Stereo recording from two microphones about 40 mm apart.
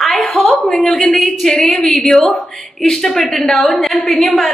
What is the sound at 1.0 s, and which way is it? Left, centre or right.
A woman's voice, centre.